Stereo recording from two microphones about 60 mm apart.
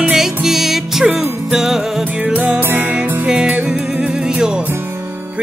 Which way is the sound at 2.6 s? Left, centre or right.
Right.